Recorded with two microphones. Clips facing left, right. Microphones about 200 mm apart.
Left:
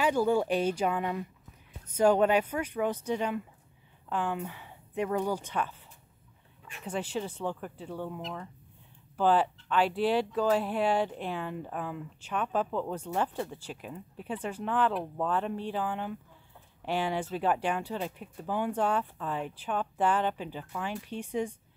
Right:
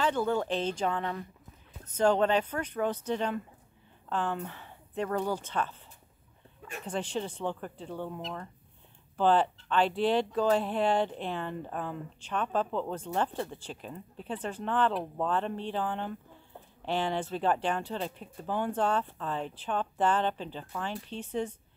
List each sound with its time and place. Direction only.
0.0 s speech: 10° left (ahead or behind)
6.9 s speech: 5° left (ahead or behind)